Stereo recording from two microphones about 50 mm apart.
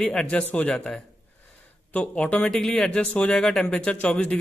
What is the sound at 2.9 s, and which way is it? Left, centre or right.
Speech, left.